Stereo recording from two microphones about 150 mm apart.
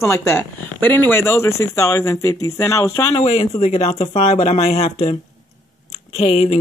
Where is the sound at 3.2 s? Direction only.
45° left (ahead or behind).